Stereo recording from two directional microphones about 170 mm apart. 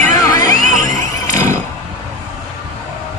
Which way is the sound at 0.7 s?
45° right (ahead or behind).